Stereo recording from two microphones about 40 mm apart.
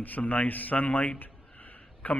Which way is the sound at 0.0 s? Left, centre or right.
Left.